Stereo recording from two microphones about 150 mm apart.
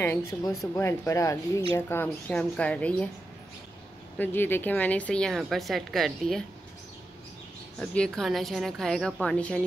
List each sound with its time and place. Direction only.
0.0 s speech: 20° left (ahead or behind)
4.2 s a woman's voice: 15° left (ahead or behind)
7.8 s a woman's voice: 5° left (ahead or behind)